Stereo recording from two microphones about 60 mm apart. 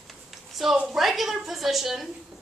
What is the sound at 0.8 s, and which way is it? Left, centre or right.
A woman's voice, centre.